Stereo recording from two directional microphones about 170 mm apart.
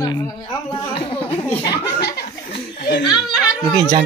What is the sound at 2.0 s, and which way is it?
Speech, 70° left (ahead or behind).